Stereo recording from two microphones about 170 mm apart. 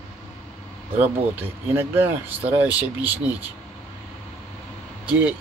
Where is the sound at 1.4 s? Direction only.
15° right (ahead or behind).